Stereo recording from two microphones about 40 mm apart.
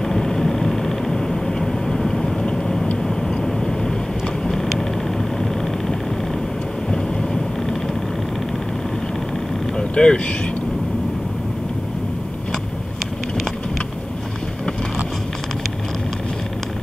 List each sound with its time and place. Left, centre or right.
0.0 s vehicle: centre
9.8 s speech: left